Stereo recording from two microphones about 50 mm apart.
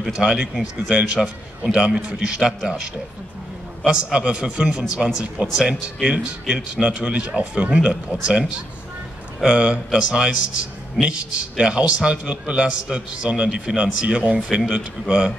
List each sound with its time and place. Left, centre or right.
0.1 s a man's voice: centre
3.8 s a man's voice: centre